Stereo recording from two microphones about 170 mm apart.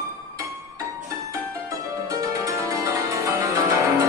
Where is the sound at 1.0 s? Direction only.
20° right (ahead or behind).